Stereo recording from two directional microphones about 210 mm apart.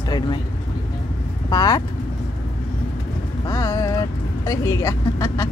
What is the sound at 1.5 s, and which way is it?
Speech, 20° left (ahead or behind).